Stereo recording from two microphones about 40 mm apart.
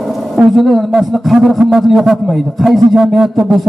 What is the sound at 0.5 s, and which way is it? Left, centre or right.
A man's voice, centre.